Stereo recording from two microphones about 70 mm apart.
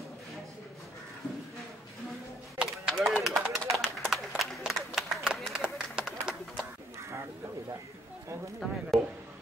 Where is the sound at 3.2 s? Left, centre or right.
Centre.